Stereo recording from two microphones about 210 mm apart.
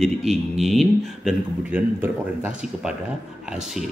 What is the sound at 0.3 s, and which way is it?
A man's voice, centre (ahead or behind).